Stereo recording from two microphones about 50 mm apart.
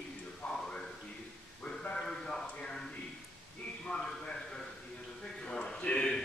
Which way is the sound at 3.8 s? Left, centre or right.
Centre.